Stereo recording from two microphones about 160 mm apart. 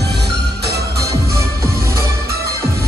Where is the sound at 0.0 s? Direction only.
90° right.